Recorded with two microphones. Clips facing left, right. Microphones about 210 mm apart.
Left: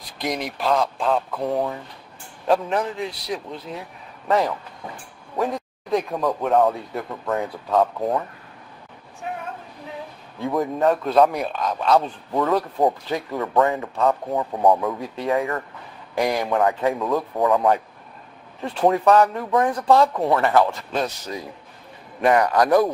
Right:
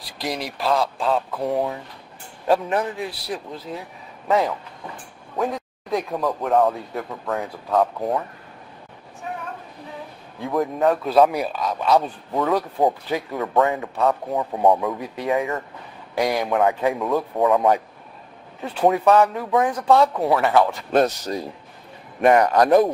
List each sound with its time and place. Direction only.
0.2 s speech: centre (ahead or behind)
5.4 s speech: centre (ahead or behind)
10.4 s speech: centre (ahead or behind)
15.0 s speech: 15° right (ahead or behind)
16.2 s speech: centre (ahead or behind)
16.6 s speech: 15° right (ahead or behind)
17.1 s speech: centre (ahead or behind)
20.9 s speech: 50° right (ahead or behind)
22.2 s speech: 20° right (ahead or behind)